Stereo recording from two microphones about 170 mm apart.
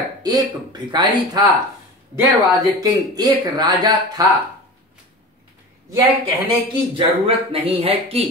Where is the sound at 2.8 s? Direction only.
20° right (ahead or behind).